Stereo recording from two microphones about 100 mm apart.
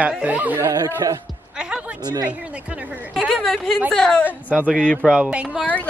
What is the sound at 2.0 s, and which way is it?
Speech, 40° right (ahead or behind).